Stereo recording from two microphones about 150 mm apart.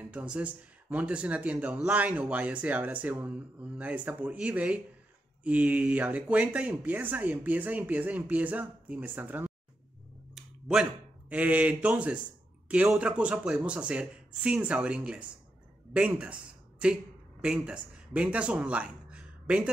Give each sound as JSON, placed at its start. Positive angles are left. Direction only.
{"t": 0.0, "sound": "speech", "side_deg": -10}